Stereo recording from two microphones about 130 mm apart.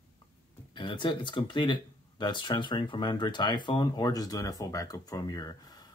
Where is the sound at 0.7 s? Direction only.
40° left (ahead or behind).